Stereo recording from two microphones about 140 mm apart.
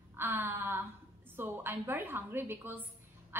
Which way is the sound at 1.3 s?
15° right (ahead or behind).